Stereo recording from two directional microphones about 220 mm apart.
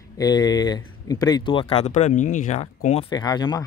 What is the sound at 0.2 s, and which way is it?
Speech, 20° left (ahead or behind).